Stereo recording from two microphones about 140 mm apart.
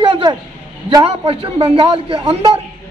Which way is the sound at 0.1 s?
35° right (ahead or behind).